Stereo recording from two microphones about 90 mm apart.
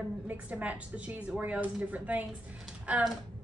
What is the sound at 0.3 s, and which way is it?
A woman's voice, 15° right (ahead or behind).